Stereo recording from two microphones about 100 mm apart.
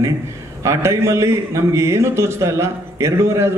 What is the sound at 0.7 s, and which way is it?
A man's voice, 25° right (ahead or behind).